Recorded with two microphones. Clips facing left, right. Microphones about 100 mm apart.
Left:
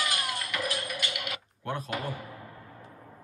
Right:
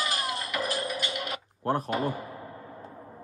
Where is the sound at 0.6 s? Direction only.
35° right (ahead or behind).